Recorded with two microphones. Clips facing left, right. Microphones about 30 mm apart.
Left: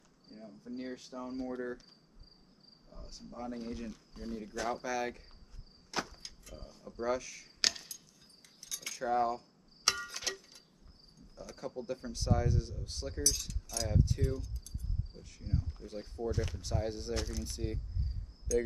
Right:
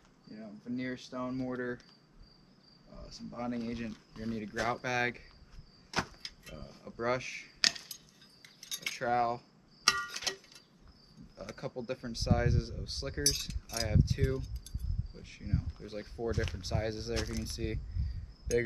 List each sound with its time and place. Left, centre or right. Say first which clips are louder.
0.3 s speech: right 5 dB; right
2.9 s speech: right 4 dB; right
5.9 s vehicle: right 2 dB; centre
6.2 s speech: right 3 dB; right
7.6 s a sound: right 2 dB; centre
7.9 s cutlery: right 2 dB; right
9.8 s a sound: right 3 dB; centre
11.3 s speech: right 1 dB; right
16.3 s speech: right 1 dB; right
17.1 s speech: right 2 dB; right